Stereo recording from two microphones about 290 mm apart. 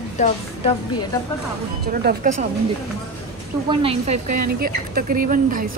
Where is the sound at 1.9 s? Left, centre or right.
Right.